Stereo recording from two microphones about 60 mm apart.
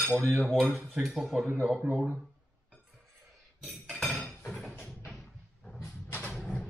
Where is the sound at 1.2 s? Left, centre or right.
Centre.